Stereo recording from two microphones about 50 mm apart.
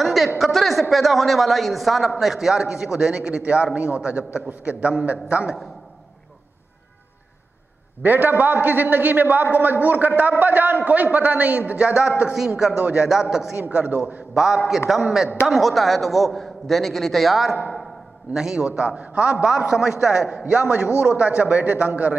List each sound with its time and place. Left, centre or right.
0.0 s a sound: centre
0.4 s a man's voice: centre; by 5.6 s right
8.0 s a man's voice: right
12.3 s a man's voice: centre
13.1 s a man's voice: centre
13.7 s speech: right
14.3 s a man's voice: centre
19.4 s a man's voice: centre; by 22.1 s right